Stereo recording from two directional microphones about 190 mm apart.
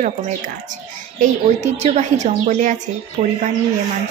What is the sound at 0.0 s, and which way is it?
Speech, 40° right (ahead or behind).